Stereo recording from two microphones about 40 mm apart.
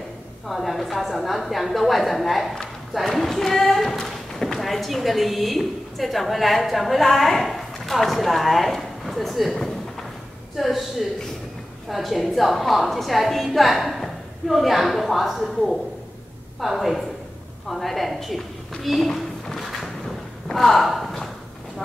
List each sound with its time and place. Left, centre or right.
0.5 s a woman's voice: centre
9.6 s a sound: centre
10.5 s a woman's voice: centre